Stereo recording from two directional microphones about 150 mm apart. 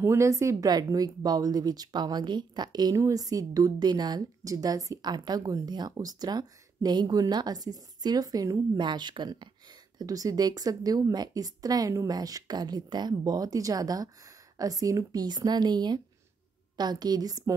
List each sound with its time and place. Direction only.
0.0 s speech: 20° right (ahead or behind)